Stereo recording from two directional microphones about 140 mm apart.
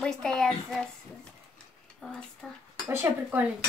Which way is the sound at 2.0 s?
10° left (ahead or behind).